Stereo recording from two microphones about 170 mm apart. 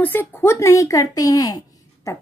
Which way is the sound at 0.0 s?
10° left (ahead or behind).